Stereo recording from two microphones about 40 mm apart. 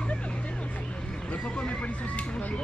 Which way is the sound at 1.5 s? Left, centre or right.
Left.